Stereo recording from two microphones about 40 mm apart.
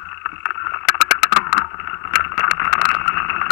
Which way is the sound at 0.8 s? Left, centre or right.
Centre.